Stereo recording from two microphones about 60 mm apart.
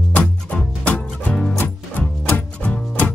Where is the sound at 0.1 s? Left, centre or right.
Left.